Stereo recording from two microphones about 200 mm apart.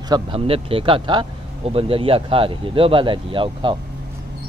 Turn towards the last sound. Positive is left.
turn(degrees=-25)  # may be behind; listen again after turning